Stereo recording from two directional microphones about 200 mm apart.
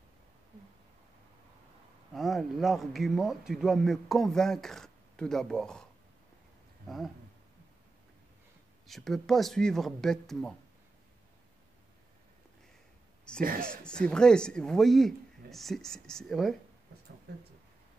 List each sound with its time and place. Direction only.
2.1 s speech: centre (ahead or behind)
8.8 s speech: centre (ahead or behind)
13.6 s speech: 5° left (ahead or behind)